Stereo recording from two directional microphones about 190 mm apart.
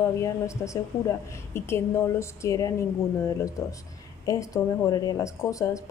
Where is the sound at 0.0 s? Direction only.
15° left (ahead or behind).